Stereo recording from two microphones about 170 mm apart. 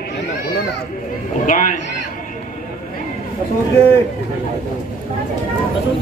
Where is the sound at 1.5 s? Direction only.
55° left (ahead or behind).